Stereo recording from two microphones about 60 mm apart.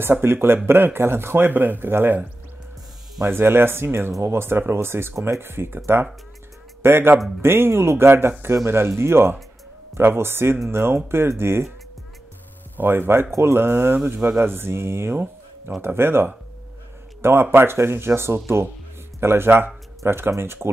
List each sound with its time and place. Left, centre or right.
0.0 s speech: right
3.3 s speech: right
6.8 s a man's voice: right
12.7 s speech: right